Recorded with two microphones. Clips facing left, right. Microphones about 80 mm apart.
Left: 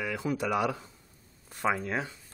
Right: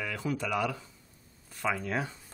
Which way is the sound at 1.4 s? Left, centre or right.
Left.